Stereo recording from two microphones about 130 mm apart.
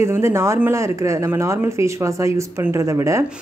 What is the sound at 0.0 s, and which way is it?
A woman's voice, 20° right (ahead or behind).